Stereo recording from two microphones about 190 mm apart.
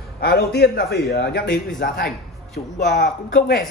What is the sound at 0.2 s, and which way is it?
Speech, 55° left (ahead or behind).